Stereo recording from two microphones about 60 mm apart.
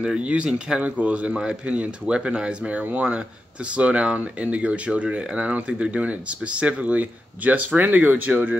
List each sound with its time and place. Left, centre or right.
0.0 s speech: centre